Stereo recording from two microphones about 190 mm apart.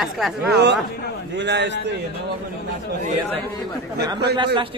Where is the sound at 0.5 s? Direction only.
65° right (ahead or behind).